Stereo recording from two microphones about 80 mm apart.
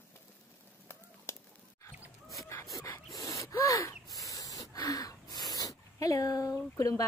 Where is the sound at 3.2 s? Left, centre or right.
Left.